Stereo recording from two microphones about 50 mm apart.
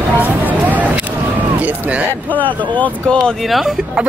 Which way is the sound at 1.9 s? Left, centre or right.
Right.